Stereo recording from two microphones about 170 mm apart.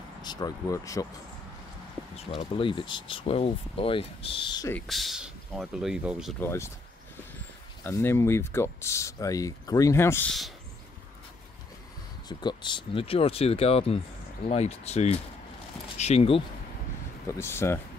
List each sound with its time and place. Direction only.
0.2 s speech: 25° left (ahead or behind)
2.1 s speech: 30° left (ahead or behind)
4.8 s speech: centre (ahead or behind)
6.4 s speech: 15° left (ahead or behind)
7.8 s speech: 15° left (ahead or behind)
12.3 s speech: 25° left (ahead or behind)
17.3 s speech: 15° left (ahead or behind)